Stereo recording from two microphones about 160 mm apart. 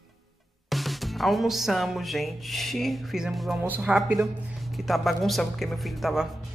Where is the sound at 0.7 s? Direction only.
Centre (ahead or behind).